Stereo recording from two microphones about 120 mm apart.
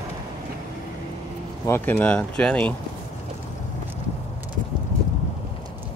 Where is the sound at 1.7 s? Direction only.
15° left (ahead or behind).